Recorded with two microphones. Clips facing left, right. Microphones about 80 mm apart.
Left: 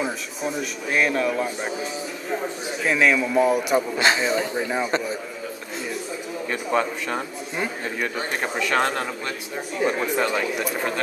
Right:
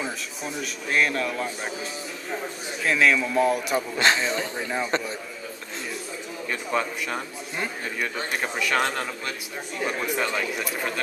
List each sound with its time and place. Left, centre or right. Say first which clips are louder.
0.0 s a man's voice: left 5 dB; centre
6.7 s speech: left 4 dB; left
7.5 s speech: left 3 dB; centre
8.4 s speech: left 2 dB; left
9.9 s speech: left 4 dB; left